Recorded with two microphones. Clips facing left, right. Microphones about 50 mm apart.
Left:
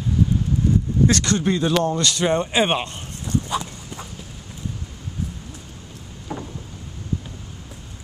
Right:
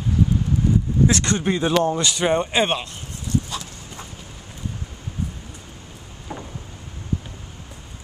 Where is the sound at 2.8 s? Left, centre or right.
Left.